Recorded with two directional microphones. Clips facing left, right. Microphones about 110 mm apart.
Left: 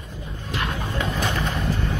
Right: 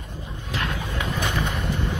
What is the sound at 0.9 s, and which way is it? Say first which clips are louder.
Bird: left 2 dB; 15° right (ahead or behind).